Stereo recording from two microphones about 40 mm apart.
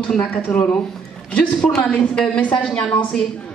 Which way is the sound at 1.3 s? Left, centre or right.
Left.